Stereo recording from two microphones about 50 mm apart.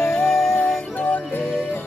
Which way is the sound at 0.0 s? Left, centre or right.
Centre.